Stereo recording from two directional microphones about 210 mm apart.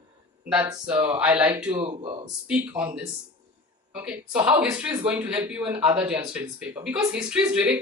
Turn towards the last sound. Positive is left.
turn(degrees=-5)  # may be behind; listen again after turning